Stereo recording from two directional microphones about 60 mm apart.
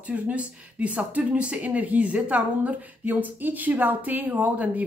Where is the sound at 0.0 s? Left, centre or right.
Right.